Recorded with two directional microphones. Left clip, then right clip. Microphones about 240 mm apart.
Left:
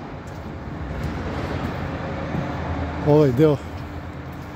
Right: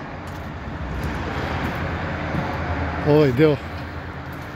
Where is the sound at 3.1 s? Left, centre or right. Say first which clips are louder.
Even; centre.